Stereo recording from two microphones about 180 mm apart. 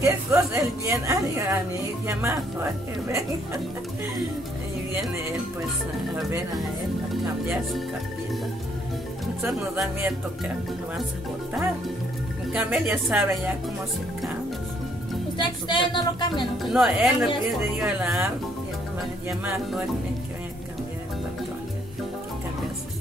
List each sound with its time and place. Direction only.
0.0 s a woman's voice: 15° right (ahead or behind)
9.5 s speech: centre (ahead or behind)
12.5 s speech: 5° right (ahead or behind)
15.3 s a woman's voice: 25° left (ahead or behind)
16.7 s a woman's voice: centre (ahead or behind)